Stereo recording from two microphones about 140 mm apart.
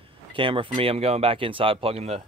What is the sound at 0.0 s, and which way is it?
Speech, 40° right (ahead or behind).